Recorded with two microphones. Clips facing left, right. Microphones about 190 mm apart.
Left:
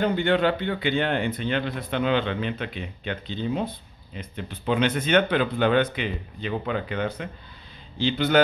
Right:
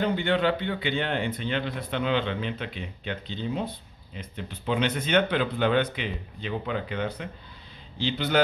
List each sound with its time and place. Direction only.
0.0 s a man's voice: 50° left (ahead or behind)
4.6 s a man's voice: 50° left (ahead or behind)